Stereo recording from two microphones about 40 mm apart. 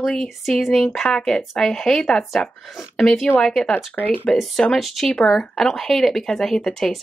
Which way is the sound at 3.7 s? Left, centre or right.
Left.